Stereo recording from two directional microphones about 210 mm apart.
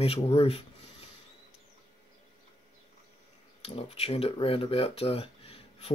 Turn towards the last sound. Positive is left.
turn(degrees=30)  # may be behind; listen again after turning